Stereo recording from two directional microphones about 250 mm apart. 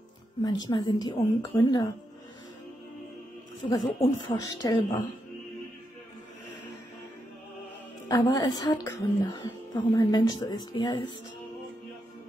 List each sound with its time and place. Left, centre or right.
0.4 s a woman's voice: centre
3.6 s a woman's voice: centre
8.1 s a woman's voice: centre